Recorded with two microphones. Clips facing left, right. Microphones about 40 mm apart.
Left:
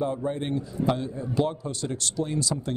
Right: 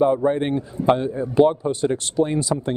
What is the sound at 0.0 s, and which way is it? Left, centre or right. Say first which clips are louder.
A man's voice: right 10 dB; right.